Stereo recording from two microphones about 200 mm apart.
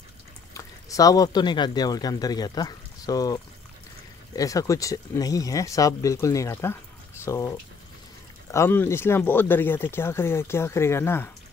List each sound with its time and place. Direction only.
0.6 s speech: 15° left (ahead or behind)